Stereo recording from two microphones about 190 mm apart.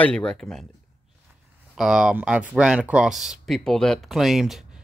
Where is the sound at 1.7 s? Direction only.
5° right (ahead or behind).